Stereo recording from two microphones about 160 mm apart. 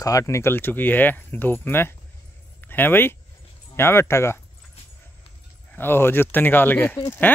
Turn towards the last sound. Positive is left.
turn(degrees=15)  # may be behind; listen again after turning